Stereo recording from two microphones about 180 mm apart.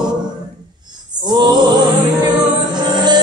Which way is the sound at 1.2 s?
25° right (ahead or behind).